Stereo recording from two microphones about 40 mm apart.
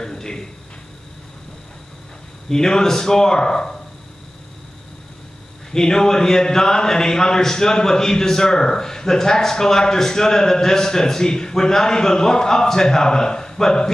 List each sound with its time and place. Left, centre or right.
0.0 s a sound: centre
2.5 s a man's voice: centre
5.7 s a man's voice: centre